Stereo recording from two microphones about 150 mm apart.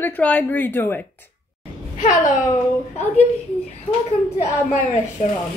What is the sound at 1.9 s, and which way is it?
Speech, 60° left (ahead or behind).